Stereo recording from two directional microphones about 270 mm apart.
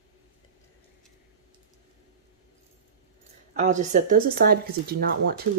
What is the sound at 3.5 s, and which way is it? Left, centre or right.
Speech, right.